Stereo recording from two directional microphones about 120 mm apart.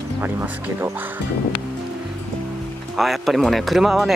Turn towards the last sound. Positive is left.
turn(degrees=0)  # may be behind; listen again after turning